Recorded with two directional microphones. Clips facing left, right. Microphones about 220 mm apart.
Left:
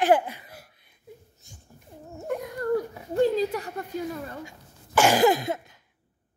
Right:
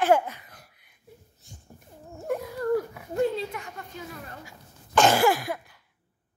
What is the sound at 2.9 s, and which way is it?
Speech, 35° left (ahead or behind).